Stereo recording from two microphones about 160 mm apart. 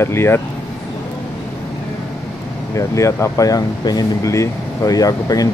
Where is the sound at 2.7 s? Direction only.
20° left (ahead or behind).